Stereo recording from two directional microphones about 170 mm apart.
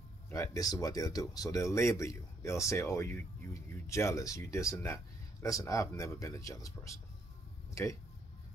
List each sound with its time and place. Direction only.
0.3 s speech: 20° left (ahead or behind)